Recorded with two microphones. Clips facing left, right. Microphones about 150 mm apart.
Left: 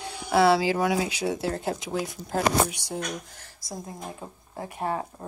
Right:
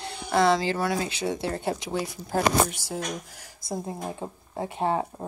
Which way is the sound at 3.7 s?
30° right (ahead or behind).